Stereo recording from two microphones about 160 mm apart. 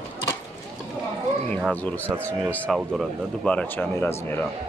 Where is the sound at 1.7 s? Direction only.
10° left (ahead or behind).